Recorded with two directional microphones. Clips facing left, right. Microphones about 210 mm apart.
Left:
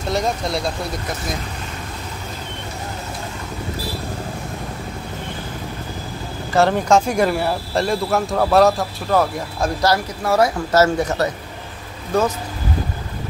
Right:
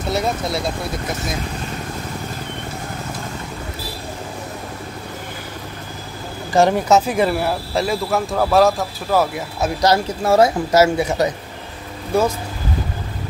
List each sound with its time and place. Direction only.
0.1 s speech: 5° right (ahead or behind)
6.5 s speech: 10° right (ahead or behind)
9.8 s speech: 25° right (ahead or behind)
10.7 s speech: 10° right (ahead or behind)